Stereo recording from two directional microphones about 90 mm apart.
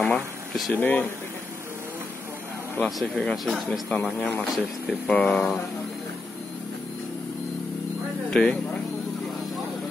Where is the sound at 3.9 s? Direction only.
10° left (ahead or behind).